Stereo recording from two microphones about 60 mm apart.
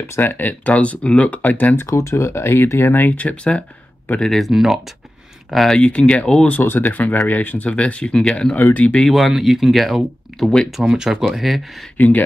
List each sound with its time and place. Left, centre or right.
0.1 s speech: left
1.8 s speech: left; by 4.5 s centre
4.5 s speech: centre
5.8 s speech: centre
6.6 s speech: left
9.0 s speech: centre
10.8 s speech: centre